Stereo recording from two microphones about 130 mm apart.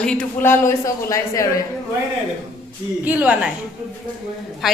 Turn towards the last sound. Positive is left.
turn(degrees=-5)  # may be behind; listen again after turning